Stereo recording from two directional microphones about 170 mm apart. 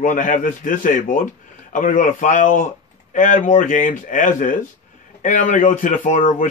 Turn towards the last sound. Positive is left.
turn(degrees=50)  # may be behind; listen again after turning